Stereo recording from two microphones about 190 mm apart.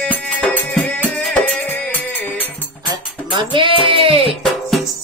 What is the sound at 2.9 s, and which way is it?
Music, 25° right (ahead or behind).